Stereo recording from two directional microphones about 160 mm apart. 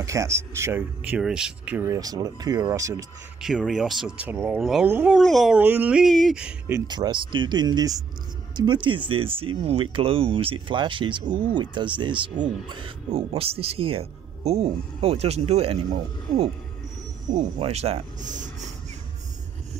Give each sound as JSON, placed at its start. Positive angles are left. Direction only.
{"t": 0.0, "sound": "speech", "side_deg": -20}
{"t": 3.3, "sound": "speech", "side_deg": 0}
{"t": 4.3, "sound": "speech", "side_deg": -10}
{"t": 6.7, "sound": "speech", "side_deg": -25}
{"t": 17.6, "sound": "speech", "side_deg": -40}